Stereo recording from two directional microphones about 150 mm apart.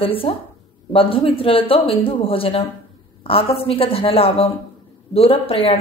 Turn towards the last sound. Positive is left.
turn(degrees=40)  # may be behind; listen again after turning